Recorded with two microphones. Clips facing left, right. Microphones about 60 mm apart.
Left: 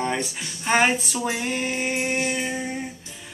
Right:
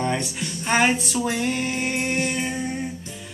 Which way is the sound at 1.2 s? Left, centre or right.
Centre.